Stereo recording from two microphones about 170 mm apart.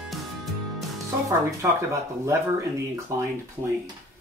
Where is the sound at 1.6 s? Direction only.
15° right (ahead or behind).